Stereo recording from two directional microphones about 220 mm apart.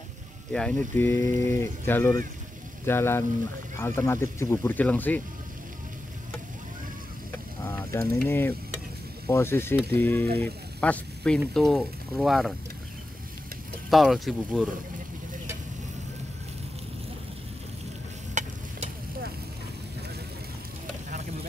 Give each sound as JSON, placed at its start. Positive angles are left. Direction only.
{"t": 0.5, "sound": "speech", "side_deg": 5}
{"t": 7.6, "sound": "mechanisms", "side_deg": 10}
{"t": 9.3, "sound": "speech", "side_deg": 10}
{"t": 13.8, "sound": "speech", "side_deg": 0}
{"t": 18.4, "sound": "stir", "side_deg": -35}